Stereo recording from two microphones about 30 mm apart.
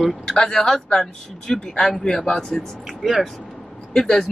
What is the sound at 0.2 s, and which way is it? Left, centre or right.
Speech, left.